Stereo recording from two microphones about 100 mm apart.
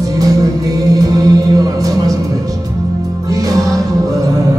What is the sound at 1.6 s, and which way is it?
Music, 35° right (ahead or behind).